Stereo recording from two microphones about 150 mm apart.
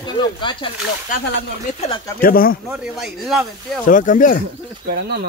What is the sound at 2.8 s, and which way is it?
Speech, centre (ahead or behind).